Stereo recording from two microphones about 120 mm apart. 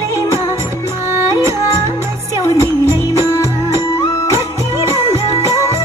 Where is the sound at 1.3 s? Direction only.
25° right (ahead or behind).